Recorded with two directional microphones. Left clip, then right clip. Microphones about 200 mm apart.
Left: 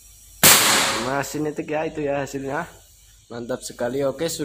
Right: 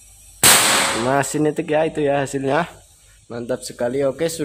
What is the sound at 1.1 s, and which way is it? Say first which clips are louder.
Speech: right 6 dB; 35° right (ahead or behind).